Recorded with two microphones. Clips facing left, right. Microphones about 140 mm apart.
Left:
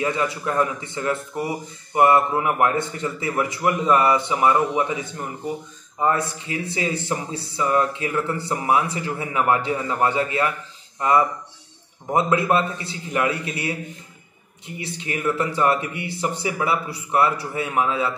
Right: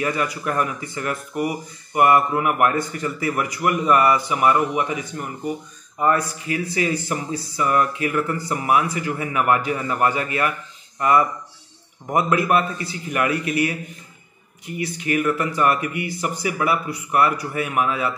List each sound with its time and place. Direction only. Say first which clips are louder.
0.0 s speech: even; 25° left (ahead or behind)
14.8 s speech: right 6 dB; 25° left (ahead or behind)